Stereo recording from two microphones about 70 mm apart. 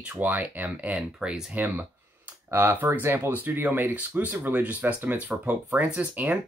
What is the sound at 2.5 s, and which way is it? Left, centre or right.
Speech, right.